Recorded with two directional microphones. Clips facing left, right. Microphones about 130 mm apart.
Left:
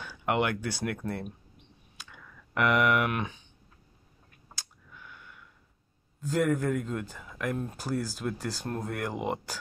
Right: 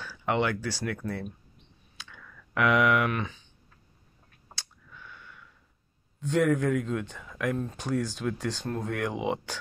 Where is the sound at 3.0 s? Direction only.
15° left (ahead or behind).